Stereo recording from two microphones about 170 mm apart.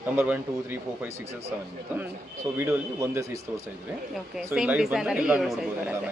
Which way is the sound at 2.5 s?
10° right (ahead or behind).